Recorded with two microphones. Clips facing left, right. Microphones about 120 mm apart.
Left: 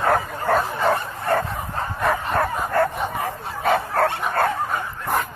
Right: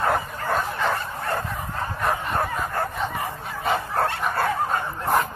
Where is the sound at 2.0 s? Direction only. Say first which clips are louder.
Left 4 dB; 85° left.